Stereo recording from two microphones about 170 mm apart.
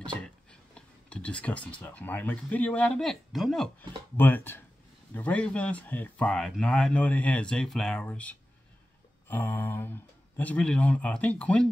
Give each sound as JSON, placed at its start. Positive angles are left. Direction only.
{"t": 0.0, "sound": "speech", "side_deg": 5}